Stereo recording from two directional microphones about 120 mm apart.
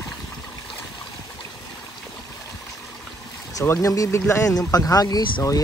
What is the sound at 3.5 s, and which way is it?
Speech, 25° left (ahead or behind).